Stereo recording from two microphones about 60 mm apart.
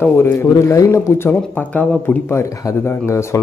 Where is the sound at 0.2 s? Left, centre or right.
Left.